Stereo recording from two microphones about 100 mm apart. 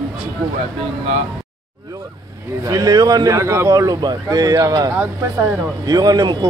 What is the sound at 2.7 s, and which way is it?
Speech, 35° right (ahead or behind).